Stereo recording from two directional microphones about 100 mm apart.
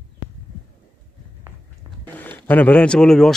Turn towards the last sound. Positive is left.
turn(degrees=5)  # may be behind; listen again after turning